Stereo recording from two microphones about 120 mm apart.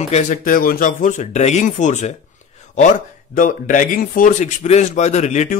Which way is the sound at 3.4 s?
90° left.